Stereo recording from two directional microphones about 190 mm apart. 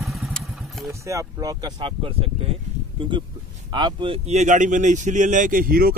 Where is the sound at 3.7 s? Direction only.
25° right (ahead or behind); by 5.9 s 50° right (ahead or behind).